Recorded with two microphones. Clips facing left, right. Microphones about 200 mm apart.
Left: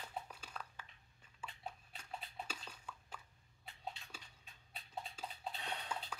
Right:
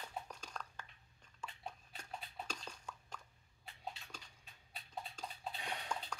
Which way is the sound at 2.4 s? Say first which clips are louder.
Right 2 dB; 5° left (ahead or behind).